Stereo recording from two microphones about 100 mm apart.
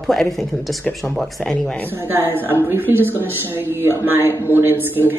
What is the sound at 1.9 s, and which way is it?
Speech, 25° right (ahead or behind).